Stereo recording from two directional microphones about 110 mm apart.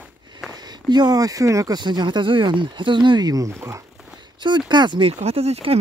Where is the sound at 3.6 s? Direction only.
25° right (ahead or behind).